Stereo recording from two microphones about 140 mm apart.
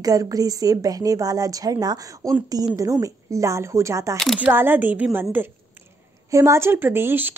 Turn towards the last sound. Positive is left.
turn(degrees=-15)  # may be behind; listen again after turning